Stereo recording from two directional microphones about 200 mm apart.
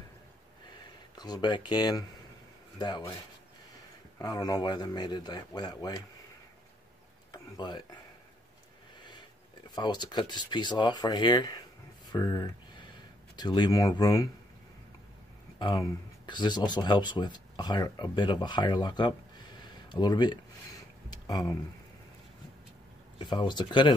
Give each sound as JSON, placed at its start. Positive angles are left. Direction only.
{"t": 1.1, "sound": "speech", "side_deg": 20}
{"t": 4.2, "sound": "speech", "side_deg": 20}
{"t": 7.3, "sound": "speech", "side_deg": 20}
{"t": 9.0, "sound": "speech", "side_deg": 20}
{"t": 15.6, "sound": "speech", "side_deg": 20}
{"t": 21.1, "sound": "a sound", "side_deg": 20}
{"t": 23.1, "sound": "speech", "side_deg": 25}